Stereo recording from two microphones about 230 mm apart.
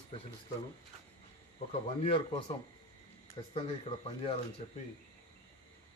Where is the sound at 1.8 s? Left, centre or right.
Left.